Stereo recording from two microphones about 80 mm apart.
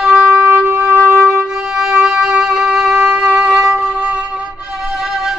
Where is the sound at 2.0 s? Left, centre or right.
Centre.